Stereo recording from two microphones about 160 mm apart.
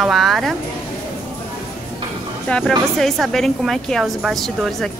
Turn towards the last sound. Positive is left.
turn(degrees=0)  # may be behind; listen again after turning